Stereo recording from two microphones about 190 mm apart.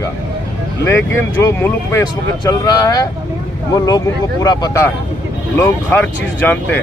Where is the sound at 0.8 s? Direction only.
10° left (ahead or behind).